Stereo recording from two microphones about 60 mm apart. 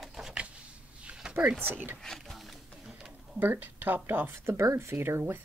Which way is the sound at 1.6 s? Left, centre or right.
Right.